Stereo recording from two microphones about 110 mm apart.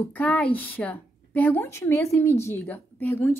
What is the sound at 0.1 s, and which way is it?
A woman's voice, 10° left (ahead or behind).